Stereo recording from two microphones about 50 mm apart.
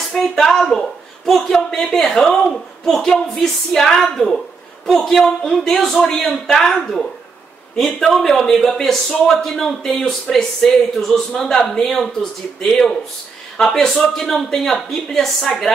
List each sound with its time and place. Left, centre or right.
0.1 s speech: centre